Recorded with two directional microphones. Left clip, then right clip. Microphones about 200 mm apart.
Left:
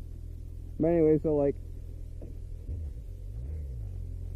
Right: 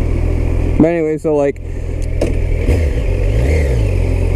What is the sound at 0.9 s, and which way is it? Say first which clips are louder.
Speech: right 10 dB; 10° right (ahead or behind).